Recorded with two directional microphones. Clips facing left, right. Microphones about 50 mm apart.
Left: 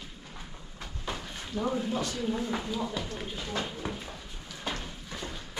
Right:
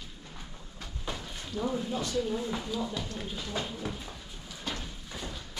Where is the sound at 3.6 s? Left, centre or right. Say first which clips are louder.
Left 1 dB; centre.